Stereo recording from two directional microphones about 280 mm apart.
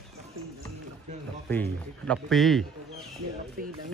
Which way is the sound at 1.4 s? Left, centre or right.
Centre.